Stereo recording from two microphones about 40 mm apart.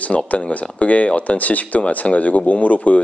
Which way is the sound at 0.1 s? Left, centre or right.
Left.